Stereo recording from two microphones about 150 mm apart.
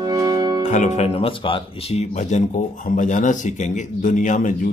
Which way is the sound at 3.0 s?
55° left (ahead or behind).